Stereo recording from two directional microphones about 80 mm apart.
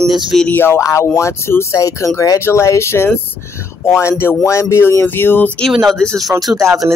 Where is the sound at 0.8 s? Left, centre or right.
Left.